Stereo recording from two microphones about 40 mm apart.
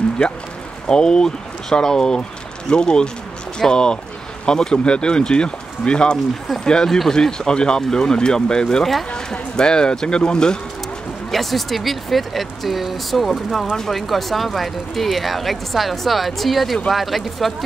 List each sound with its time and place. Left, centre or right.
0.8 s speech: centre
11.3 s speech: centre